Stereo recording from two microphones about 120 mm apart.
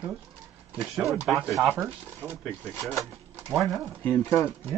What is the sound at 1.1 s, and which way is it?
Speech, 5° right (ahead or behind).